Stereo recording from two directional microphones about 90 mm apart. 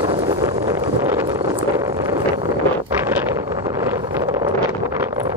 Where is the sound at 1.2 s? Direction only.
50° right (ahead or behind).